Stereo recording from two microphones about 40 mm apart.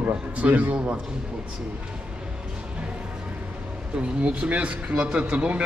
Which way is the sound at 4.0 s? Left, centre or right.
Right.